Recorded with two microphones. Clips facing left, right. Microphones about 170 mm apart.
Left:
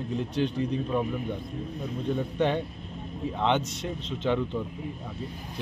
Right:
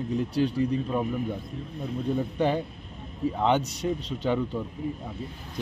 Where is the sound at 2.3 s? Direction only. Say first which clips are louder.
Right 1 dB; 10° right (ahead or behind).